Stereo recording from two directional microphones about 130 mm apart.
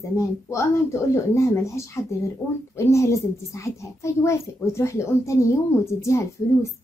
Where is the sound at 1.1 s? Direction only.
20° left (ahead or behind).